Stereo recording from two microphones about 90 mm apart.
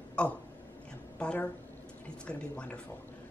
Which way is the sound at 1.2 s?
15° left (ahead or behind).